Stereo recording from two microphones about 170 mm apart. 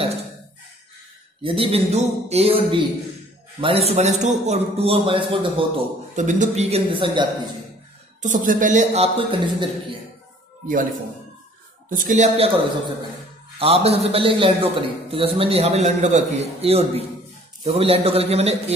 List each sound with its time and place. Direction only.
1.4 s a man's voice: 35° right (ahead or behind)
6.1 s a man's voice: 45° right (ahead or behind); by 7.2 s 30° right (ahead or behind)
8.2 s a man's voice: 50° right (ahead or behind); by 9.9 s 30° right (ahead or behind)
11.9 s a man's voice: 50° right (ahead or behind)
13.6 s a man's voice: 35° right (ahead or behind)